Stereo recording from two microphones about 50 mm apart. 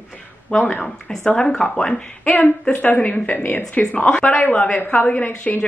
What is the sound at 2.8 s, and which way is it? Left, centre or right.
Speech, left.